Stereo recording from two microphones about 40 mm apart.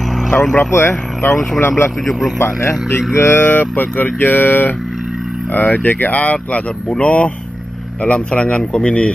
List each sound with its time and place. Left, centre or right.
0.3 s speech: left
0.7 s speech: left
2.0 s a man's voice: centre
2.3 s speech: left
3.2 s speech: left
5.5 s speech: left